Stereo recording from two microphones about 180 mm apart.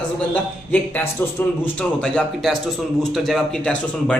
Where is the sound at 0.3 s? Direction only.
10° left (ahead or behind).